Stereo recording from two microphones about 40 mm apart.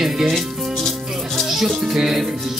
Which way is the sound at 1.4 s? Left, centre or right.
Centre.